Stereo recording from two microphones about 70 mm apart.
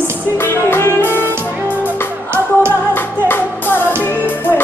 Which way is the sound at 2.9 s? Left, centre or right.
Left.